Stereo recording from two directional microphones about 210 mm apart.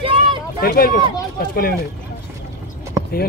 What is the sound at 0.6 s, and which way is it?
Speech, 45° left (ahead or behind).